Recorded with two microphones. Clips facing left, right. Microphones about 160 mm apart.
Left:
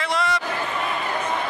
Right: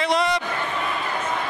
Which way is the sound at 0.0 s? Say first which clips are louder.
Right 3 dB; 20° right (ahead or behind).